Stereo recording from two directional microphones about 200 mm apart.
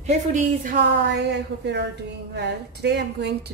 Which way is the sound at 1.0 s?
60° right (ahead or behind).